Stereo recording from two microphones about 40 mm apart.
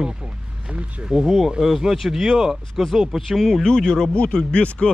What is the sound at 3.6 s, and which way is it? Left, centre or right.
Speech, centre.